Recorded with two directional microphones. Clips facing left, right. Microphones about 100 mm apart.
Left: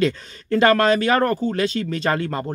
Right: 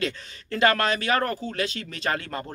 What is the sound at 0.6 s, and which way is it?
Speech, 35° left (ahead or behind).